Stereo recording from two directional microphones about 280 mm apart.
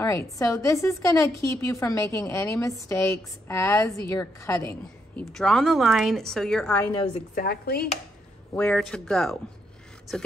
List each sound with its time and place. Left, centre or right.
0.0 s a woman's voice: centre
7.2 s speech: left
8.5 s speech: centre